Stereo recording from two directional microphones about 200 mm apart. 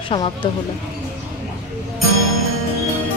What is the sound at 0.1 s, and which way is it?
Speech, 25° left (ahead or behind).